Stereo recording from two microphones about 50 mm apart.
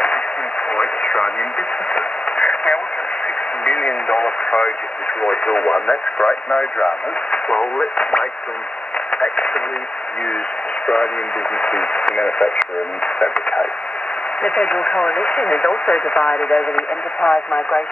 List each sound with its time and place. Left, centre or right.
0.7 s radio: centre
5.2 s speech: left
11.5 s speech: centre